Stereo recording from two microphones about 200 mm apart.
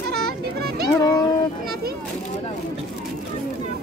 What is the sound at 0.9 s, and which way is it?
Speech, 15° left (ahead or behind).